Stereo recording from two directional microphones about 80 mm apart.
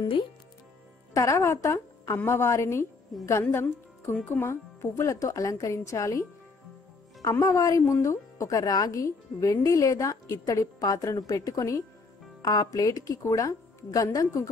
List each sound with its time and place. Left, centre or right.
1.1 s a woman's voice: left
4.5 s a woman's voice: left